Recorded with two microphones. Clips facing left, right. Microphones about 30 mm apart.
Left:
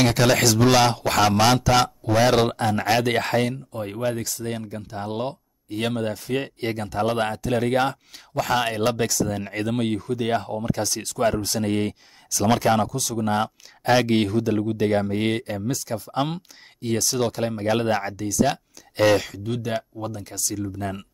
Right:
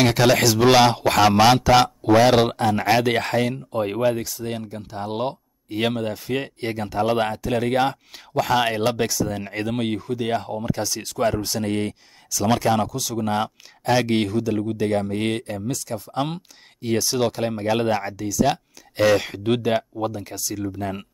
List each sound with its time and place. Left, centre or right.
0.0 s speech: centre
3.5 s speech: right
4.0 s speech: centre
6.4 s speech: centre
10.2 s speech: centre
15.1 s speech: centre
17.0 s speech: centre
19.3 s speech: right
19.7 s speech: right